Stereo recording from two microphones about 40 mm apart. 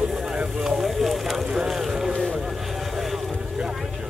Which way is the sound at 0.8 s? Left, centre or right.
Centre.